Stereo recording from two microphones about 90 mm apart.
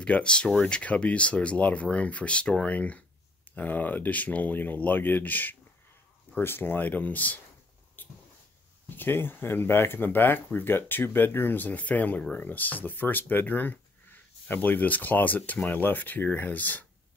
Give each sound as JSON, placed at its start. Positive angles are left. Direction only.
{"t": 0.0, "sound": "speech", "side_deg": 10}
{"t": 8.8, "sound": "speech", "side_deg": 25}